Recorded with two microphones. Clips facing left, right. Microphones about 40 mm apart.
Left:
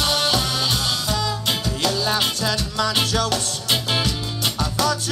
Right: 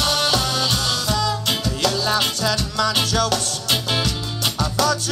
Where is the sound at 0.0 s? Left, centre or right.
Right.